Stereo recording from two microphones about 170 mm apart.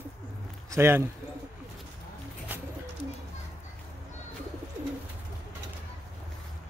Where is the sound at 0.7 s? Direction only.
15° right (ahead or behind).